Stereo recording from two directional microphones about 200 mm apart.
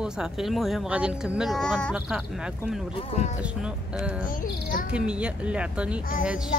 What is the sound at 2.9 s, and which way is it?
Speech, 35° left (ahead or behind).